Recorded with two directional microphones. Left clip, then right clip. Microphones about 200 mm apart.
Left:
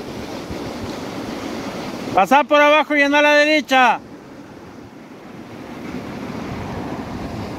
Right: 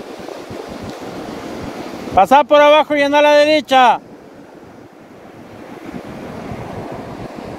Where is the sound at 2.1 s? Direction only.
20° right (ahead or behind).